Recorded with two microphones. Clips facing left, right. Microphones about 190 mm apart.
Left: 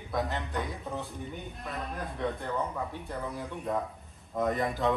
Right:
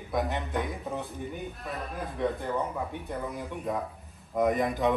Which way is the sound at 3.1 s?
Centre (ahead or behind).